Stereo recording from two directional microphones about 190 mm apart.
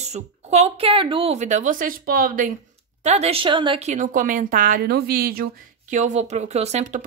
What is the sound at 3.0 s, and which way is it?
A woman's voice, 35° right (ahead or behind).